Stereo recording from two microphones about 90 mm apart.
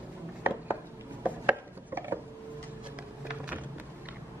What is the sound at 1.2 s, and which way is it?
Chopping, 20° right (ahead or behind).